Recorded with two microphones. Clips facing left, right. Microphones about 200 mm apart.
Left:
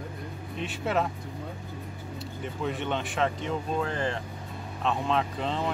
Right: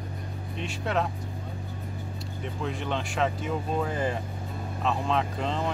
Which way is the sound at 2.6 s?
Centre (ahead or behind).